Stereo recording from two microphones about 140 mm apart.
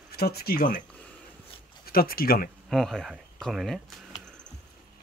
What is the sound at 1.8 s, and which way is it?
Speech, 90° left.